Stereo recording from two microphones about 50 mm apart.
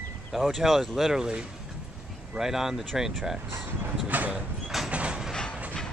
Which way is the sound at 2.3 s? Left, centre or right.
Centre.